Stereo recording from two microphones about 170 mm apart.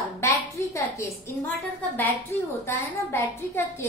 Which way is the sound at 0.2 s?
15° left (ahead or behind).